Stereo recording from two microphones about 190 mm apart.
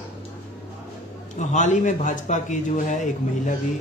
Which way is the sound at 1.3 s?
40° left (ahead or behind).